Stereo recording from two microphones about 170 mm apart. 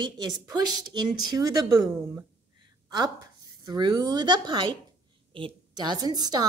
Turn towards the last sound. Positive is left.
turn(degrees=-25)  # may be behind; listen again after turning